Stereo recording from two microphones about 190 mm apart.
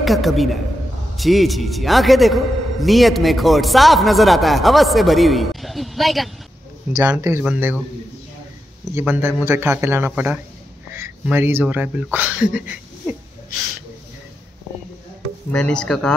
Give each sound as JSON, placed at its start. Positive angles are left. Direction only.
{"t": 0.0, "sound": "a man's voice", "side_deg": 0}
{"t": 6.9, "sound": "speech", "side_deg": -15}
{"t": 8.9, "sound": "speech", "side_deg": -10}
{"t": 15.5, "sound": "a man's voice", "side_deg": 5}